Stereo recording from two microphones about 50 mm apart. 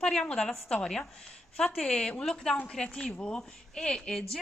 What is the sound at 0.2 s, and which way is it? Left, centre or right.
A woman's voice, centre.